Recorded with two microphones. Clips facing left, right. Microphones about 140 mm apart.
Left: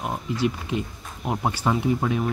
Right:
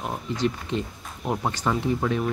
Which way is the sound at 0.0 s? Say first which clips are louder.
Left 1 dB; 10° left (ahead or behind).